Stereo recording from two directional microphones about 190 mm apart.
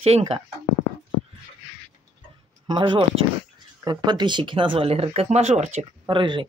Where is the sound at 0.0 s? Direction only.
30° right (ahead or behind).